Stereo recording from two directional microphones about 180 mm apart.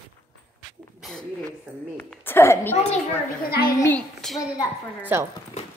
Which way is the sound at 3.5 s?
60° left (ahead or behind).